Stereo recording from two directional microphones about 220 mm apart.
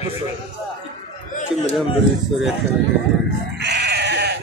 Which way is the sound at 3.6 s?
50° right (ahead or behind).